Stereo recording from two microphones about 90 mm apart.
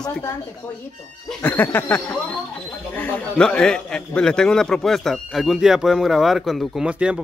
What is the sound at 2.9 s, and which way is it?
Speech, 20° left (ahead or behind).